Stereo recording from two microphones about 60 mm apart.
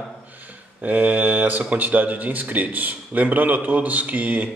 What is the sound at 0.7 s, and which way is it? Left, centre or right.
Speech, right.